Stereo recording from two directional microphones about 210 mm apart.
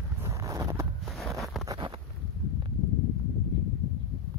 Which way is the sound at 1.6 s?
20° right (ahead or behind).